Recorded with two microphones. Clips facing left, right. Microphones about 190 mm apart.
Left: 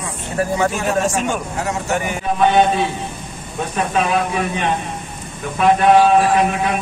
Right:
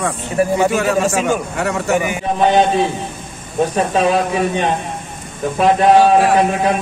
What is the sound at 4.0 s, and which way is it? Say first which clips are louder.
Speech: right 3 dB; 35° right (ahead or behind).